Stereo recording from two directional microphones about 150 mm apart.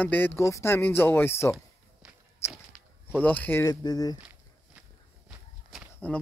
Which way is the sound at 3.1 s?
10° left (ahead or behind).